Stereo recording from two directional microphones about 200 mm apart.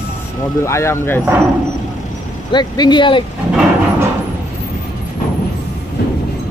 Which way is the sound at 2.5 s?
20° left (ahead or behind).